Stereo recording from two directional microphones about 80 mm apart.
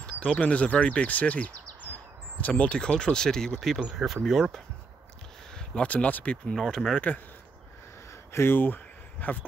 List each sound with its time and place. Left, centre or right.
0.0 s speech: centre
5.8 s speech: centre
6.5 s speech: centre
8.3 s speech: left